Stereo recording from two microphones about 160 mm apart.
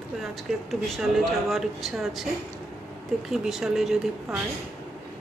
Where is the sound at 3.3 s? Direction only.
Centre (ahead or behind).